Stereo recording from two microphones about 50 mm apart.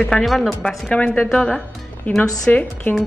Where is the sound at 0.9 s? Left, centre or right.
Left.